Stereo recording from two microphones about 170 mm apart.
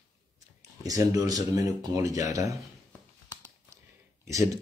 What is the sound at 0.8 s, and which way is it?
Speech, 20° right (ahead or behind).